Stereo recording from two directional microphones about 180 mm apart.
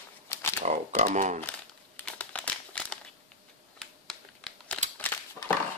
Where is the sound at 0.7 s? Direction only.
40° right (ahead or behind).